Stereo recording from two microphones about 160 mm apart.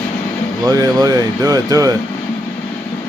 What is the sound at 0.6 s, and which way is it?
Speech, 25° right (ahead or behind).